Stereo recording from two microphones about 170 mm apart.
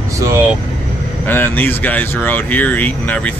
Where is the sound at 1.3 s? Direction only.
10° left (ahead or behind).